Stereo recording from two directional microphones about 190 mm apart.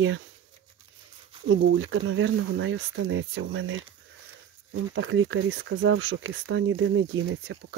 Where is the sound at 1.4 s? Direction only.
90° right.